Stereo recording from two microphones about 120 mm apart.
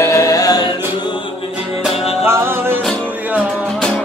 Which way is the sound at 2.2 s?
20° right (ahead or behind).